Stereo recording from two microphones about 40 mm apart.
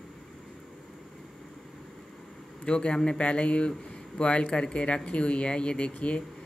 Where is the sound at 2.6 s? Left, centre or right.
Left.